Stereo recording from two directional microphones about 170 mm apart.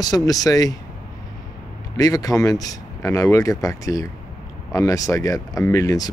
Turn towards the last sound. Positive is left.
turn(degrees=20)  # may be behind; listen again after turning